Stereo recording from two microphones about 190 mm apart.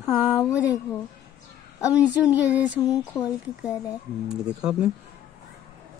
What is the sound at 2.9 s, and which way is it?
Speech, 20° left (ahead or behind).